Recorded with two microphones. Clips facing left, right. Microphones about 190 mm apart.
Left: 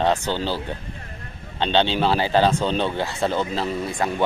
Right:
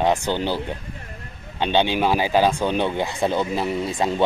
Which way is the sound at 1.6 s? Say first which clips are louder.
Even; 10° right (ahead or behind).